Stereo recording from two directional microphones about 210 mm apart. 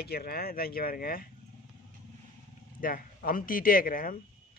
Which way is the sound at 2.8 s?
45° left (ahead or behind).